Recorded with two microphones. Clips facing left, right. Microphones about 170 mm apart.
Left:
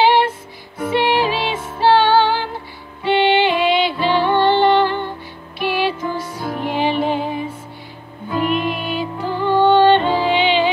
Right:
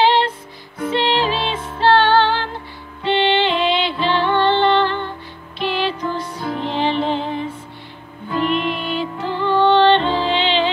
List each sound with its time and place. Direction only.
0.8 s music: 10° left (ahead or behind)
8.3 s music: 45° left (ahead or behind)
8.5 s music: 5° left (ahead or behind)